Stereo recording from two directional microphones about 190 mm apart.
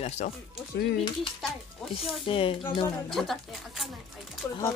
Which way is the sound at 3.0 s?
Centre (ahead or behind).